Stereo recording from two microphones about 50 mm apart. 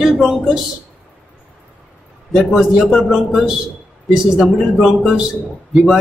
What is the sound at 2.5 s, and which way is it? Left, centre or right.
A man's voice, centre.